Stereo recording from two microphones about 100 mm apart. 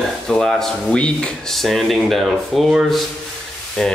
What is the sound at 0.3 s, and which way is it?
Speech, 5° left (ahead or behind).